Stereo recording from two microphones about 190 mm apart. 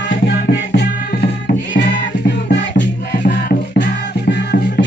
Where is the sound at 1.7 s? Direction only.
65° left (ahead or behind).